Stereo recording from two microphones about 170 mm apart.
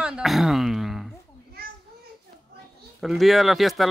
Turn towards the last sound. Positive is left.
turn(degrees=0)  # may be behind; listen again after turning